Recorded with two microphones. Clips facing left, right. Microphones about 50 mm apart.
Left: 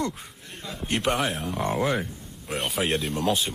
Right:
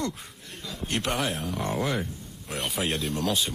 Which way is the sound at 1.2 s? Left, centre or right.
Centre.